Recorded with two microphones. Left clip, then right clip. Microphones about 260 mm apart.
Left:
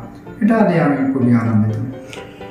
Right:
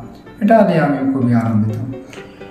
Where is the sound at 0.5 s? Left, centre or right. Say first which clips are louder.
Right 4 dB; centre.